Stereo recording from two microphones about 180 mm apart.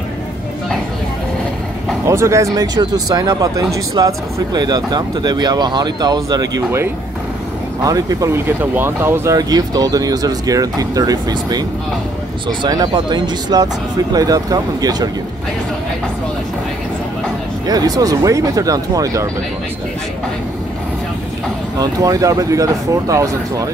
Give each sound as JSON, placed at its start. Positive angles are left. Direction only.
{"t": 2.0, "sound": "speech", "side_deg": -15}
{"t": 7.8, "sound": "speech", "side_deg": -20}
{"t": 17.6, "sound": "speech", "side_deg": -20}
{"t": 21.7, "sound": "speech", "side_deg": -20}